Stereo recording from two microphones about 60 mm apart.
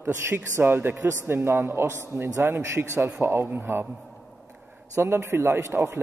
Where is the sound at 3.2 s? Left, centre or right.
Right.